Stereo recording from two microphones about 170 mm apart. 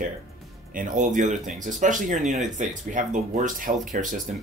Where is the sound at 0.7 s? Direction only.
50° right (ahead or behind).